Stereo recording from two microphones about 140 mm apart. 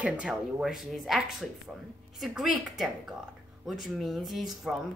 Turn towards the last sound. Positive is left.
turn(degrees=0)  # may be behind; listen again after turning